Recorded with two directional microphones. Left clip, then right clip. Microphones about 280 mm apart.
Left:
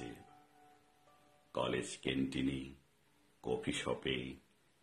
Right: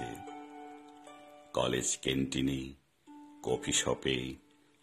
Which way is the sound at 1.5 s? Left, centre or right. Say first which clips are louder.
Right 6 dB; right.